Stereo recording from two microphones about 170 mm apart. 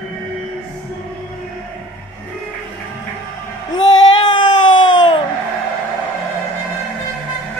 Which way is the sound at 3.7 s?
25° left (ahead or behind).